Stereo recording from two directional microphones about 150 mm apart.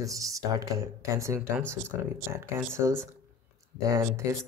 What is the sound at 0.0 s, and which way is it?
Speech, 20° right (ahead or behind).